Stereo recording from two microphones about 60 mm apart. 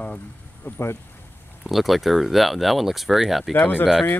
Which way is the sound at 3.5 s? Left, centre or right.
Left.